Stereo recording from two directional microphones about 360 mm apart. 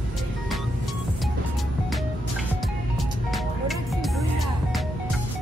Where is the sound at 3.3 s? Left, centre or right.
Centre.